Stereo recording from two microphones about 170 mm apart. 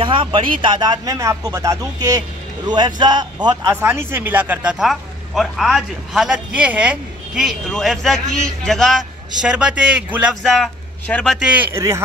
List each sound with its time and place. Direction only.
0.0 s speech: 30° right (ahead or behind)
3.7 s a man's voice: 15° right (ahead or behind); by 11.3 s 5° left (ahead or behind)
11.3 s speech: 5° right (ahead or behind)